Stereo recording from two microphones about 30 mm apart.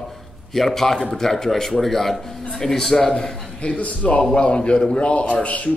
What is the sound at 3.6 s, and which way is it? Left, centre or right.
A man's voice, left.